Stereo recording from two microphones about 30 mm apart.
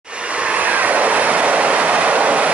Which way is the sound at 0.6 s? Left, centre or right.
Right.